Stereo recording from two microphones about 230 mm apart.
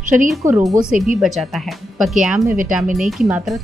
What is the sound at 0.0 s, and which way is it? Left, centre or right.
Speech, right.